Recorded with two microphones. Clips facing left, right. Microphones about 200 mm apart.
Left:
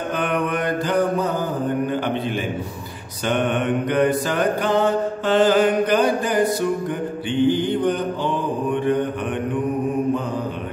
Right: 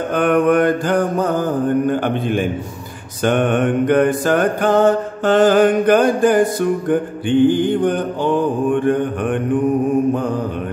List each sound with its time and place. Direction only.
0.1 s mantra: 50° right (ahead or behind)